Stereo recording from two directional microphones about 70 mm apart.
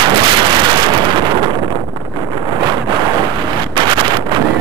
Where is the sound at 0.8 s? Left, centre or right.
Right.